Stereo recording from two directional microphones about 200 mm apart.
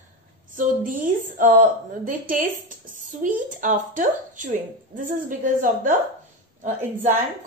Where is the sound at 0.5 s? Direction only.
40° right (ahead or behind).